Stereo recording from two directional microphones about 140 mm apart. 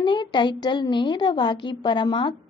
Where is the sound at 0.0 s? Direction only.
35° left (ahead or behind).